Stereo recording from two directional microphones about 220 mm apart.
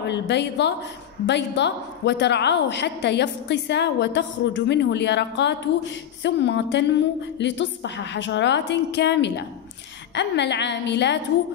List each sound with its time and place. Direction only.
0.0 s a woman's voice: 55° left (ahead or behind)